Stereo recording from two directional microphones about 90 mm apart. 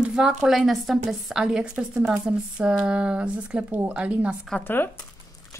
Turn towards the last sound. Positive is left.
turn(degrees=25)  # may be behind; listen again after turning